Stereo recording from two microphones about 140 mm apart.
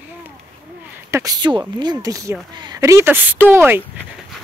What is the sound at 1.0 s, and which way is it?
Speech, 25° right (ahead or behind).